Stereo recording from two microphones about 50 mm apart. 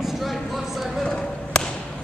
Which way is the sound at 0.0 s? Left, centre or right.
Centre.